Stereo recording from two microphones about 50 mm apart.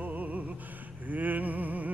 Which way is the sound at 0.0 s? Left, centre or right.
Right.